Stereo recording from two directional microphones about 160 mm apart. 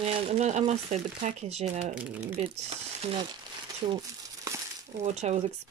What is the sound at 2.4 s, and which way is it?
Speech, 40° right (ahead or behind).